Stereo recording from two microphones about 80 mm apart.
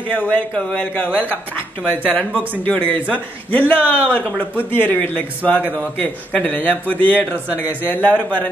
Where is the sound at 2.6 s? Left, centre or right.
Centre.